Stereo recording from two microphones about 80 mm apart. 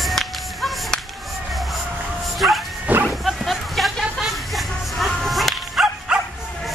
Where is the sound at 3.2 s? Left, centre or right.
Centre.